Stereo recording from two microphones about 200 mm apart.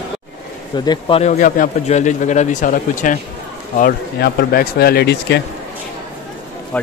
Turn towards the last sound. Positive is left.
turn(degrees=5)  # may be behind; listen again after turning